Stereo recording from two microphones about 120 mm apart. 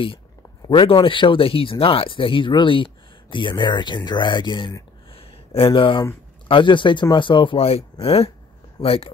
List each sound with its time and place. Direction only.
0.7 s speech: 45° left (ahead or behind)
5.1 s a sound: 50° left (ahead or behind)
6.4 s speech: 45° left (ahead or behind)